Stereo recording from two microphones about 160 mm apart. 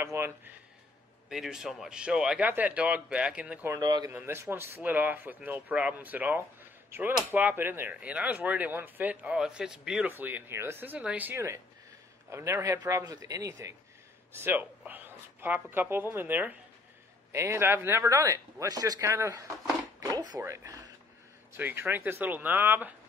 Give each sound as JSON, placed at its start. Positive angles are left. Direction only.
{"t": 0.0, "sound": "speech", "side_deg": -15}
{"t": 1.3, "sound": "speech", "side_deg": -5}
{"t": 3.7, "sound": "speech", "side_deg": -25}